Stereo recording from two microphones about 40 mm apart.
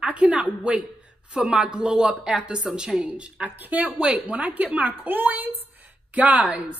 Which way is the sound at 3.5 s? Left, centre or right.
Right.